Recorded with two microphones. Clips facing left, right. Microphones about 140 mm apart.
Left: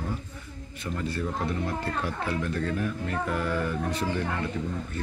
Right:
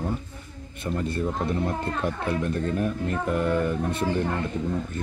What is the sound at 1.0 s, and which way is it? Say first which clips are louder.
Speech: right 3 dB; 25° right (ahead or behind).